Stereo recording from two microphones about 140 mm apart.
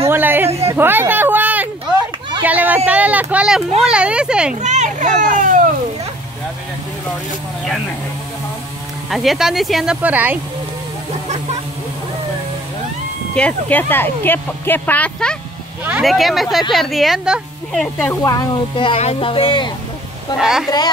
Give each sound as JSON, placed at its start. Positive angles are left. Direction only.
{"t": 0.1, "sound": "a sound", "side_deg": -15}
{"t": 2.4, "sound": "speech", "side_deg": -10}
{"t": 4.6, "sound": "a child's voice", "side_deg": -60}
{"t": 9.1, "sound": "speech", "side_deg": 0}
{"t": 13.3, "sound": "speech", "side_deg": 10}
{"t": 18.2, "sound": "speech", "side_deg": 30}
{"t": 18.9, "sound": "speech", "side_deg": 45}
{"t": 20.3, "sound": "speech", "side_deg": -5}